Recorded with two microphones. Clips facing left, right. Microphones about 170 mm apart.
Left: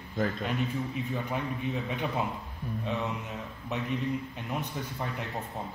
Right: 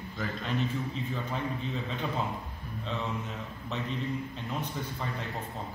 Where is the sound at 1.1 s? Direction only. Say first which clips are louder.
Left 1 dB; 15° left (ahead or behind).